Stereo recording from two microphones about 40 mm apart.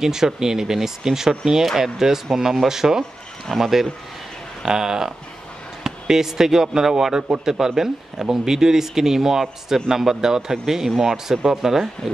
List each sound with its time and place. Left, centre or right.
0.0 s speech: centre
3.0 s speech: centre
4.6 s speech: centre